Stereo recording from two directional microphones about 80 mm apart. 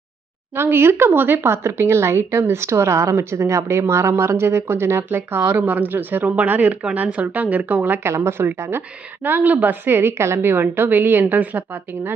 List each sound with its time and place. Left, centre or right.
0.6 s speech: right